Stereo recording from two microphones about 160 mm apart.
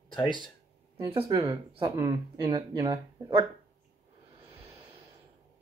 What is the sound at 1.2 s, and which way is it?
Speech, 30° right (ahead or behind).